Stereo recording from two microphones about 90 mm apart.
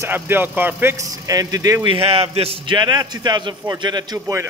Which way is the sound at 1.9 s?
90° right.